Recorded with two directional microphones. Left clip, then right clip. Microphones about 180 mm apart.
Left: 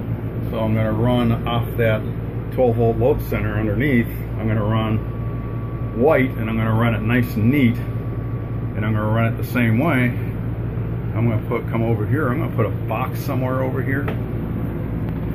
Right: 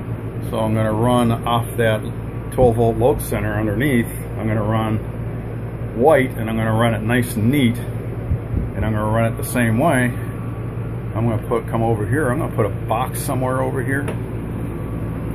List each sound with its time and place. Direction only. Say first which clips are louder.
0.6 s a man's voice: right 2 dB; 25° right (ahead or behind)
6.4 s a man's voice: right 3 dB; 15° right (ahead or behind)
8.8 s a man's voice: right 2 dB; 15° right (ahead or behind)
11.2 s a man's voice: right 3 dB; 15° right (ahead or behind)